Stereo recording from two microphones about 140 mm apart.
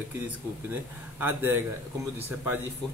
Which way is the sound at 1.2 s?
15° right (ahead or behind).